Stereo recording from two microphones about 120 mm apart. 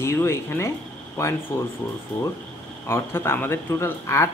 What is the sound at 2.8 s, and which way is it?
Speech, 20° left (ahead or behind).